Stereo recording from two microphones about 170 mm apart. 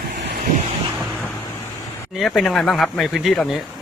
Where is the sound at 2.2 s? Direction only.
Centre (ahead or behind).